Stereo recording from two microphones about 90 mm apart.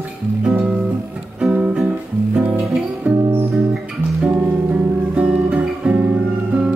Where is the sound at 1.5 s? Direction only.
20° right (ahead or behind).